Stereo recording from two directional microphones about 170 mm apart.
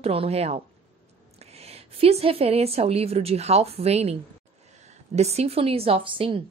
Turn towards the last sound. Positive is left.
turn(degrees=-30)  # may be behind; listen again after turning